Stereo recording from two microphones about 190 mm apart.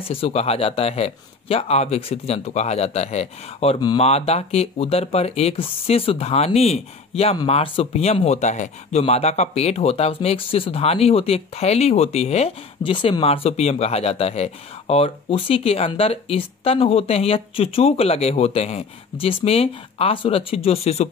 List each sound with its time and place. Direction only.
0.1 s speech: 30° left (ahead or behind)